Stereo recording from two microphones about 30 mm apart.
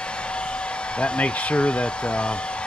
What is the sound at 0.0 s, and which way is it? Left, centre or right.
Hair dryer, left.